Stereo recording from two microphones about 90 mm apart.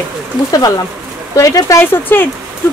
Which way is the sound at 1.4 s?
35° left (ahead or behind).